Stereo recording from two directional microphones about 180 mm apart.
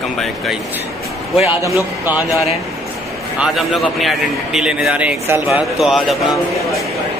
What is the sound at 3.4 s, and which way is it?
A man's voice, centre (ahead or behind).